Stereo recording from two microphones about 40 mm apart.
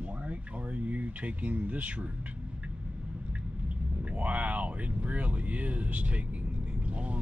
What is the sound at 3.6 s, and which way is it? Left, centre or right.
Speech, right.